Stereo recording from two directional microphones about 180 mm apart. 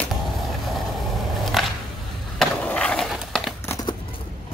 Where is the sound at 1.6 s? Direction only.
Centre (ahead or behind).